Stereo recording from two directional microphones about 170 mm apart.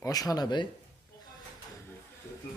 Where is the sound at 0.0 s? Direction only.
20° left (ahead or behind).